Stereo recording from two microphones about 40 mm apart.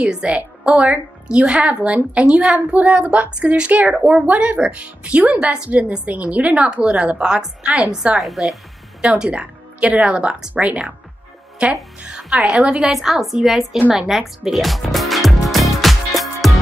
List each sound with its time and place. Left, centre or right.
0.0 s a woman's voice: right
8.2 s a woman's voice: centre
9.0 s a woman's voice: right
9.8 s a woman's voice: right
12.8 s a woman's voice: centre
13.9 s music: centre